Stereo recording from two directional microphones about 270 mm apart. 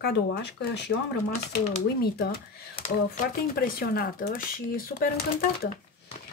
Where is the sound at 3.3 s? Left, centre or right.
Left.